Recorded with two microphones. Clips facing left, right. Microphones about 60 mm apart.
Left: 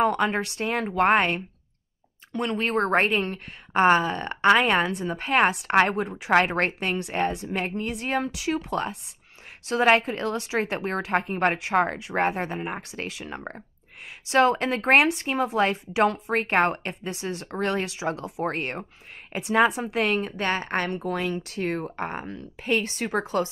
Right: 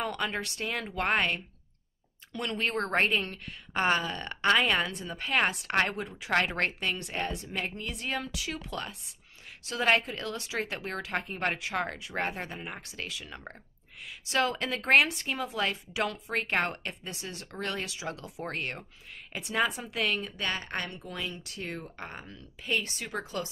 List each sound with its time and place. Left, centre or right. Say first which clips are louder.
0.0 s a woman's voice: left 10 dB; left
9.9 s a woman's voice: left 6 dB; left